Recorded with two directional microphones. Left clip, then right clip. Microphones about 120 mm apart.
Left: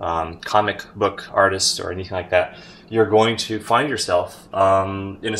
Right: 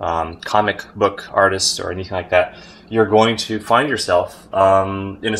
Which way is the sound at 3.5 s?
25° right (ahead or behind).